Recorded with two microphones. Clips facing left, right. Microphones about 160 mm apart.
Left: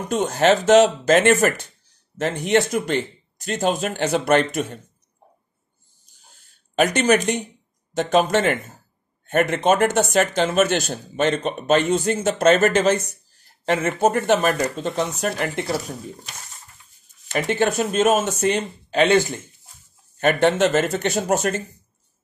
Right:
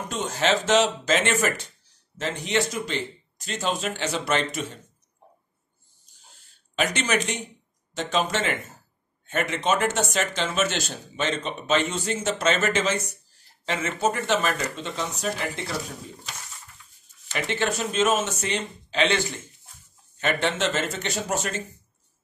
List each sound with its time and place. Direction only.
0.1 s speech: 50° left (ahead or behind)
6.7 s speech: 50° left (ahead or behind)
15.1 s speech: 55° left (ahead or behind)
17.3 s speech: 50° left (ahead or behind)